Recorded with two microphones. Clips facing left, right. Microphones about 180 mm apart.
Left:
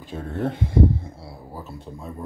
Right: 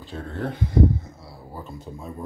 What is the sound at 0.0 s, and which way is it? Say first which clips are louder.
Speech: left 3 dB; 20° left (ahead or behind).